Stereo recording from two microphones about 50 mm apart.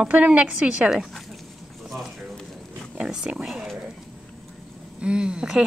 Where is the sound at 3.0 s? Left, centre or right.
Centre.